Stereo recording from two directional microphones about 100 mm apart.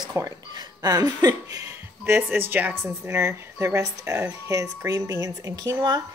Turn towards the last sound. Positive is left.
turn(degrees=-40)  # may be behind; listen again after turning